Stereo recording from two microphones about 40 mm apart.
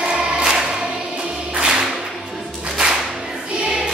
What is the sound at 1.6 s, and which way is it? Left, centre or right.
Music, centre.